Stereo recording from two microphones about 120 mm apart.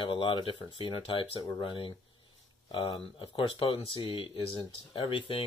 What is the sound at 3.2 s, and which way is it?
Speech, 45° left (ahead or behind).